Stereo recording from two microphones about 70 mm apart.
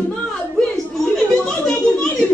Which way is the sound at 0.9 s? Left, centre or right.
Centre.